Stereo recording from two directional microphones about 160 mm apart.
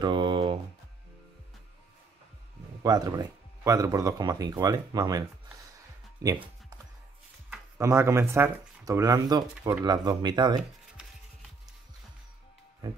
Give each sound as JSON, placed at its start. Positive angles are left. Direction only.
{"t": 0.0, "sound": "a sound", "side_deg": -30}
{"t": 2.8, "sound": "speech", "side_deg": -25}
{"t": 7.4, "sound": "speech", "side_deg": -15}